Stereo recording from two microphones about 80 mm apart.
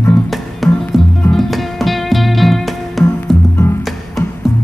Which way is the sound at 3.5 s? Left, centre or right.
Left.